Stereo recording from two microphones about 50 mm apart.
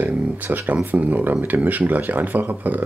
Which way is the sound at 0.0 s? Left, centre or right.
Right.